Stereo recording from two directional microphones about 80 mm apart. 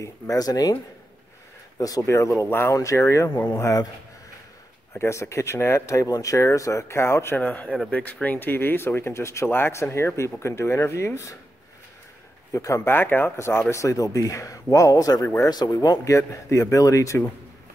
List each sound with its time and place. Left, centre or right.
0.0 s speech: left
1.8 s speech: left
2.4 s speech: left
2.7 s speech: left
4.9 s speech: left
7.3 s speech: left
12.5 s speech: left
12.9 s speech: left